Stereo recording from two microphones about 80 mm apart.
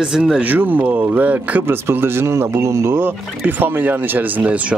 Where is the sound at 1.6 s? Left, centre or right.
Right.